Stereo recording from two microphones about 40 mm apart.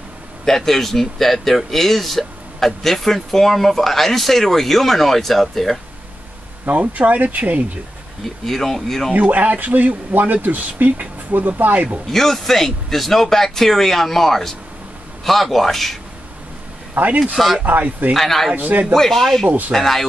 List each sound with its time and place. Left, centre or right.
0.5 s speech: centre
6.7 s speech: right
8.2 s speech: centre
9.1 s a man's voice: right
12.1 s speech: centre
16.9 s a man's voice: right
18.1 s speech: centre
18.5 s a man's voice: right
18.9 s speech: centre